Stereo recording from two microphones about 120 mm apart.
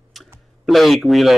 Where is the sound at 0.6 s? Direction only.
Centre (ahead or behind).